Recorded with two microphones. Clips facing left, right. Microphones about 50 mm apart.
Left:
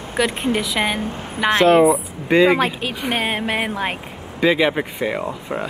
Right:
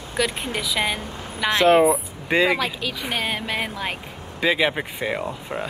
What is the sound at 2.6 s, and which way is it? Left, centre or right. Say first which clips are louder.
A woman's voice: left 5 dB; left.